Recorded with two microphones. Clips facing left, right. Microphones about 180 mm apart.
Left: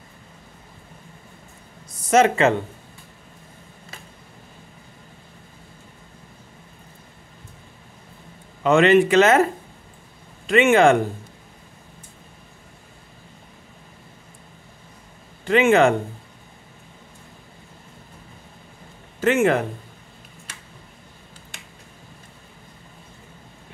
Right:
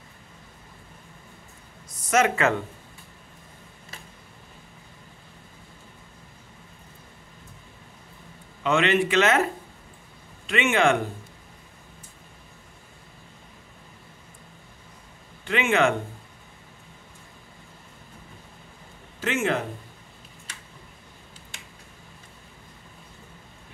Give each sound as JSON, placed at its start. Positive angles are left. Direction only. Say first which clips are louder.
{"t": 2.0, "sound": "speech", "louder": "left 5 dB", "side_deg": 30}
{"t": 8.6, "sound": "a man's voice", "louder": "left 7 dB", "side_deg": 45}
{"t": 10.4, "sound": "a man's voice", "louder": "left 7 dB", "side_deg": 45}
{"t": 15.4, "sound": "a man's voice", "louder": "left 7 dB", "side_deg": 40}
{"t": 19.2, "sound": "a man's voice", "louder": "left 7 dB", "side_deg": 55}